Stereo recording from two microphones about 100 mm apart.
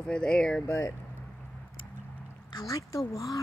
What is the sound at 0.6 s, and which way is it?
Speech, 35° left (ahead or behind).